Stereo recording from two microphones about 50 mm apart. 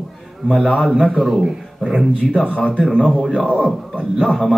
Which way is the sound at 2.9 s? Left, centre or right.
Centre.